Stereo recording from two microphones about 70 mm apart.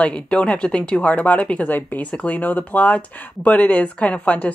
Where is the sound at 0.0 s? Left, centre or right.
Centre.